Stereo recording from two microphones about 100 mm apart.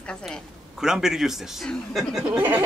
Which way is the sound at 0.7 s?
5° right (ahead or behind).